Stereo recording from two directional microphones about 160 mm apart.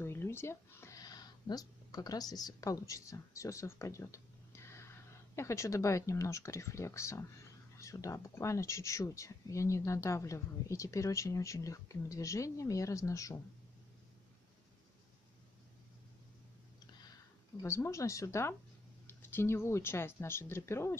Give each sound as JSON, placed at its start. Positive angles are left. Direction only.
{"t": 0.0, "sound": "speech", "side_deg": 15}
{"t": 17.6, "sound": "speech", "side_deg": 15}